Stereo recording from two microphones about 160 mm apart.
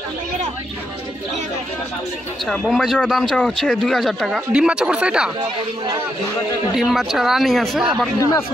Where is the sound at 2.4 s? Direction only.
Centre (ahead or behind).